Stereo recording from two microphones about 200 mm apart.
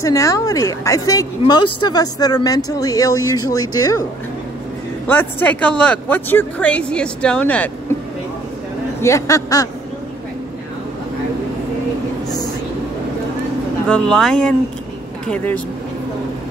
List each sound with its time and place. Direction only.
0.0 s speech: 15° left (ahead or behind)
5.0 s speech: 10° left (ahead or behind)
9.0 s speech: 15° left (ahead or behind)
13.8 s speech: 5° left (ahead or behind)